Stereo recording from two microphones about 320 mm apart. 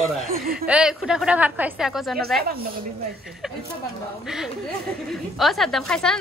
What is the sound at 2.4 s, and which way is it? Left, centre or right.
Speech, right.